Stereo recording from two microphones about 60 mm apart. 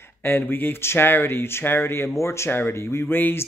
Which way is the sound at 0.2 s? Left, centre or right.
Left.